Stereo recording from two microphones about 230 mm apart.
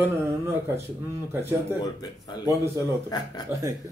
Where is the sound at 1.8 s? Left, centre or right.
Centre.